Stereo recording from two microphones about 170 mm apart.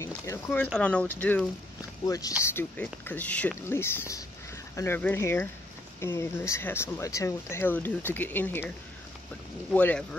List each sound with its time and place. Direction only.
0.0 s speech: 15° left (ahead or behind)
2.0 s speech: 20° left (ahead or behind)
2.4 s speech: 10° left (ahead or behind)